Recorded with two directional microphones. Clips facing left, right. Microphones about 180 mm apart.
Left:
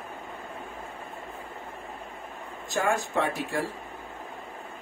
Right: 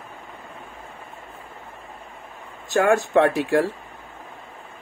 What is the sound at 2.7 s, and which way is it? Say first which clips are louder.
Speech: right 9 dB; 70° right (ahead or behind).